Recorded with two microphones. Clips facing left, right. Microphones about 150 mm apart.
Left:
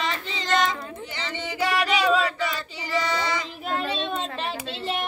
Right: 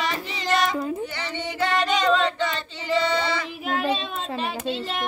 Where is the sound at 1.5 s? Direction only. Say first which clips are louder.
Right 1 dB; 10° left (ahead or behind).